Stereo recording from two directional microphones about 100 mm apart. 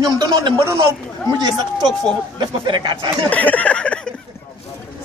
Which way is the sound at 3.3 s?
15° left (ahead or behind).